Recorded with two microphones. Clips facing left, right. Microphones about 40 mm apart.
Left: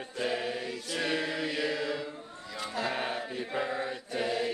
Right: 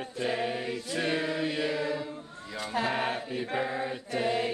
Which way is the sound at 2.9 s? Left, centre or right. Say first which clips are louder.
Right 3 dB; right.